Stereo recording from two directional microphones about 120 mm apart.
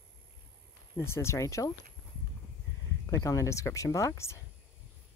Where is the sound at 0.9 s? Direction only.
20° left (ahead or behind).